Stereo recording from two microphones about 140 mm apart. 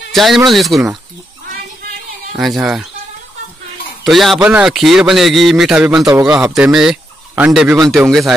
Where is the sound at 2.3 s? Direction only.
5° right (ahead or behind).